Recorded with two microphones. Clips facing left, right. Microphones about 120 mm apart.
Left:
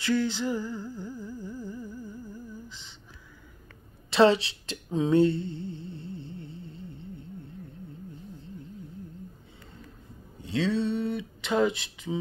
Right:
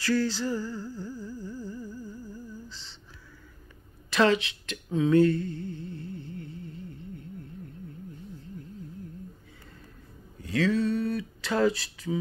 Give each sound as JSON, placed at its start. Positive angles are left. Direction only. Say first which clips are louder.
{"t": 0.0, "sound": "humming", "louder": "even", "side_deg": 20}
{"t": 4.1, "sound": "a sound", "louder": "left 3 dB", "side_deg": 30}
{"t": 10.4, "sound": "speech", "louder": "right 2 dB", "side_deg": 25}